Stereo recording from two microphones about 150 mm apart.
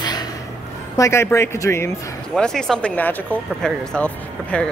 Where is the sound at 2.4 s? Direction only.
5° left (ahead or behind).